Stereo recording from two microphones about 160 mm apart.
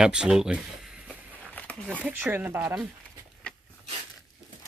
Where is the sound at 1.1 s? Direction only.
5° left (ahead or behind).